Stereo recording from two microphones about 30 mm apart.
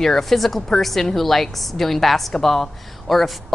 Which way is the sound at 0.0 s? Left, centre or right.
Centre.